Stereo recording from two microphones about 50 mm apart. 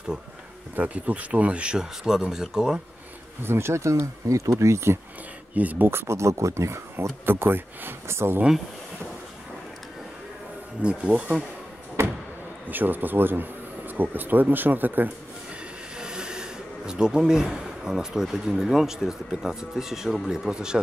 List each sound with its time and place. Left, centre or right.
0.7 s speech: right
2.0 s speech: centre
3.4 s speech: right
5.5 s speech: right
5.9 s speech: right
7.2 s speech: right
8.1 s speech: right
10.8 s speech: right
12.0 s a sound: right
12.6 s speech: right
16.0 s speech: centre